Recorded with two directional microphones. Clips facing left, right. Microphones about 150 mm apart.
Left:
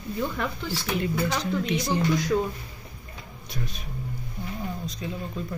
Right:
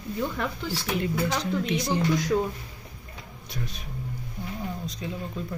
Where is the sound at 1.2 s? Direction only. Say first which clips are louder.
Even; 30° right (ahead or behind).